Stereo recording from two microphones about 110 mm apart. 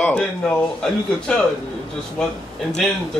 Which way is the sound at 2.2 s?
10° left (ahead or behind).